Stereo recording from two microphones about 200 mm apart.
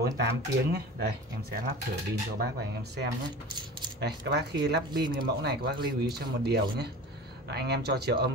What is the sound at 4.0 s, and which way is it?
Speech, 55° right (ahead or behind).